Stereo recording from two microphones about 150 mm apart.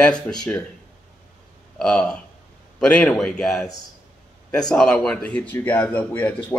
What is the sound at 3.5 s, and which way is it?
Speech, 25° left (ahead or behind).